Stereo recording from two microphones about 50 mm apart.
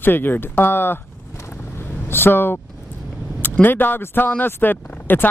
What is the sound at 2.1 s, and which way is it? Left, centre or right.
Speech, left.